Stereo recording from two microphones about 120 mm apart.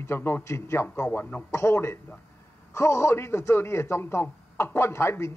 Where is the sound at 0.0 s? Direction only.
20° left (ahead or behind).